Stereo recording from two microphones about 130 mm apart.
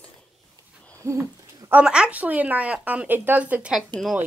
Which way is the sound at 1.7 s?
5° right (ahead or behind).